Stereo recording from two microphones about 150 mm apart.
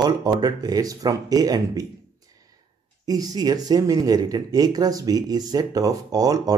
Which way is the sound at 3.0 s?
25° right (ahead or behind).